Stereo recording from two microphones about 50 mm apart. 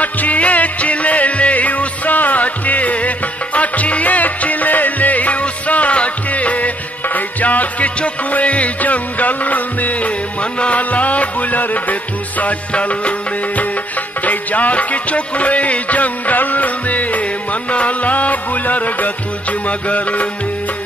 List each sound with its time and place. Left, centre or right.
0.0 s music: left
14.2 s music: left